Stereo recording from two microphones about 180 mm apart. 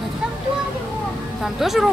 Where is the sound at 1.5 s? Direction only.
Centre (ahead or behind).